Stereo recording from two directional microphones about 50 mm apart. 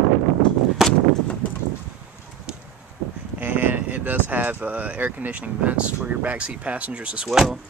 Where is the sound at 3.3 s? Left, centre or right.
Right.